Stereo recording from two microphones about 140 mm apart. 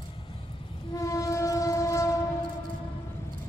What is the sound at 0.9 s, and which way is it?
Train, 25° left (ahead or behind).